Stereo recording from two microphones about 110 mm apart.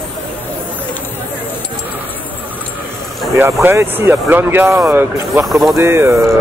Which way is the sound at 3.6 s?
20° right (ahead or behind).